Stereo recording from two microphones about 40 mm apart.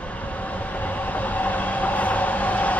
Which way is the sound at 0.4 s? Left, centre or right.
Left.